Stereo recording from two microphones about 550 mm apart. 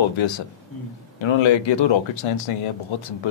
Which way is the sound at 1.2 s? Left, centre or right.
Left.